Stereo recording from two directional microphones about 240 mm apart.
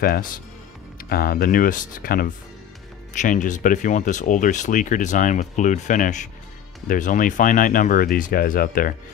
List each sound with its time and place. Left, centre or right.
0.0 s speech: left